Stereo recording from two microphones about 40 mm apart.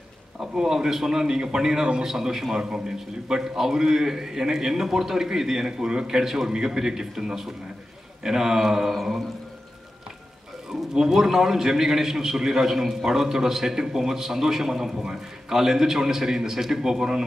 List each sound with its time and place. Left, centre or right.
0.4 s a man's voice: centre
11.0 s a man's voice: centre